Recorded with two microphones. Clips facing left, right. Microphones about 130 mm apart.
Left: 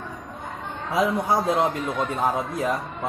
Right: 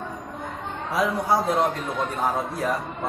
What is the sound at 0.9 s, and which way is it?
Speech, 15° left (ahead or behind).